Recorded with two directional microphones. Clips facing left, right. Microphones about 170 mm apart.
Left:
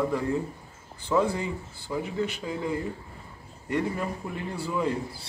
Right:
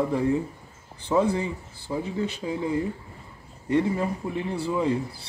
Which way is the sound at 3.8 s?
20° right (ahead or behind).